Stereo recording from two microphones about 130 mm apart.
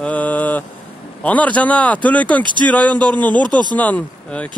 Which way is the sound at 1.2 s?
10° left (ahead or behind).